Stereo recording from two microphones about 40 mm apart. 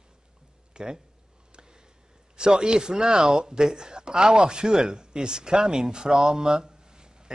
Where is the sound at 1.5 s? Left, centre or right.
Right.